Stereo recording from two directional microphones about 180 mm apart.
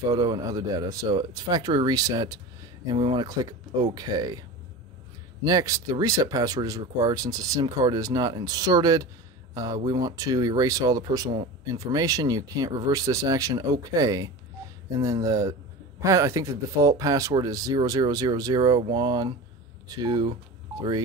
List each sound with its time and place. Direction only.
0.0 s speech: 20° right (ahead or behind)